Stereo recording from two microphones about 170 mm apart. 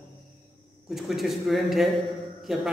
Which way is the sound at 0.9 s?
Centre (ahead or behind).